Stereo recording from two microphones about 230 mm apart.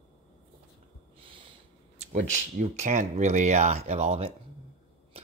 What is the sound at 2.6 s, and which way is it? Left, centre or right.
Speech, right.